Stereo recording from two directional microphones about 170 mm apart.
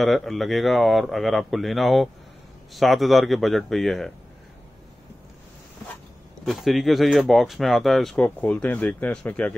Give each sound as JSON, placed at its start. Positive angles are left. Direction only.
{"t": 0.0, "sound": "speech", "side_deg": 0}
{"t": 6.4, "sound": "speech", "side_deg": 0}